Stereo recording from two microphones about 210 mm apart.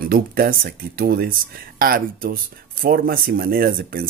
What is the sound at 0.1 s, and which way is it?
Speech, 45° right (ahead or behind).